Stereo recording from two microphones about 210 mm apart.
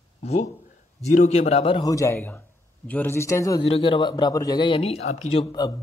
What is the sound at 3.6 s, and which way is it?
Speech, 25° left (ahead or behind).